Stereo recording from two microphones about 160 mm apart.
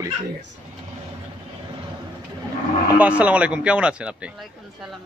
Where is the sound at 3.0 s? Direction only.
10° right (ahead or behind).